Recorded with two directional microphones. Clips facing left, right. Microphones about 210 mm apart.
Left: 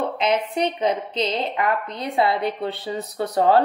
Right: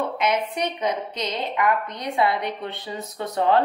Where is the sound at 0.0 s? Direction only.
30° left (ahead or behind).